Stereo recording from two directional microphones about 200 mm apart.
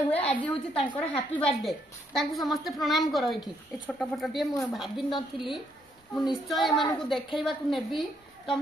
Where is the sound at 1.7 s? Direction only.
Centre (ahead or behind).